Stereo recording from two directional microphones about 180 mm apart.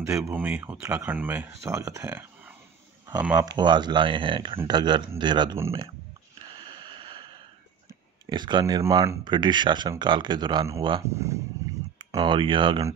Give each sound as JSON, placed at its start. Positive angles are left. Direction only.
{"t": 0.2, "sound": "speech", "side_deg": -10}
{"t": 3.5, "sound": "speech", "side_deg": -25}
{"t": 6.4, "sound": "a sound", "side_deg": -25}
{"t": 8.3, "sound": "speech", "side_deg": -25}
{"t": 12.0, "sound": "speech", "side_deg": -25}